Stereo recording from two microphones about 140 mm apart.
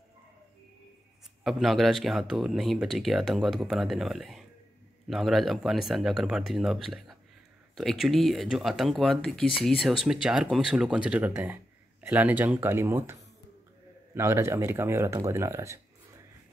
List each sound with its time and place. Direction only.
1.4 s speech: centre (ahead or behind); by 15.8 s 20° right (ahead or behind)